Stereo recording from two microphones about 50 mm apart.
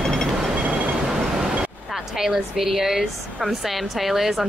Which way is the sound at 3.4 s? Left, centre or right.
Centre.